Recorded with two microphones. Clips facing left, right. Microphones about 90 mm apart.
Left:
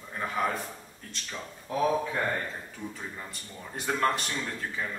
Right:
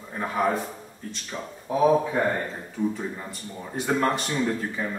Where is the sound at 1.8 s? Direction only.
15° right (ahead or behind).